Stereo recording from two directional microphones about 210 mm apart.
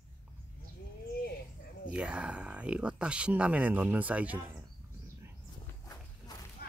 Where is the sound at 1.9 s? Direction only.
5° right (ahead or behind).